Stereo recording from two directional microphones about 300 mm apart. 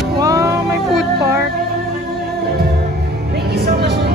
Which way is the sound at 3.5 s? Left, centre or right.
Right.